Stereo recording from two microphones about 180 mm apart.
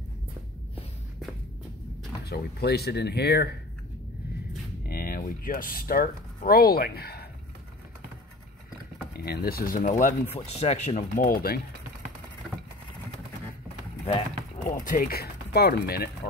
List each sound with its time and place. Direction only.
2.2 s speech: 65° left (ahead or behind)
4.8 s speech: 55° left (ahead or behind)
9.1 s speech: 60° left (ahead or behind)
14.6 s speech: 50° left (ahead or behind)